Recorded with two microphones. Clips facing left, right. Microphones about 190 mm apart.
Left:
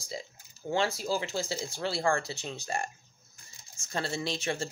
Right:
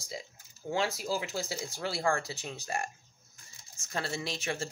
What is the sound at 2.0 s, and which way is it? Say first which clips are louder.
Speech: left 1 dB; 5° right (ahead or behind).